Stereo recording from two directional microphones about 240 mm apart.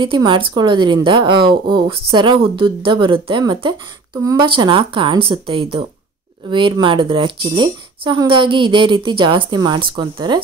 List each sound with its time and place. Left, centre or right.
0.0 s a woman's voice: centre